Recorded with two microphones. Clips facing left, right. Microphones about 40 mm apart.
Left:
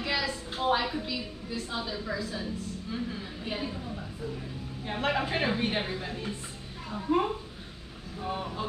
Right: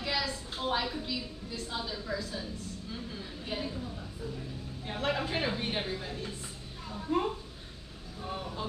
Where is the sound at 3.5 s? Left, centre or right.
Centre.